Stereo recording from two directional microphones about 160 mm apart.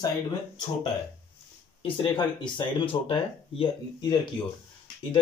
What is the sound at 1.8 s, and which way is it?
Speech, 30° left (ahead or behind).